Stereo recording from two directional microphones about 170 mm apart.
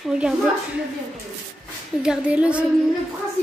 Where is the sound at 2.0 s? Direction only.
5° right (ahead or behind).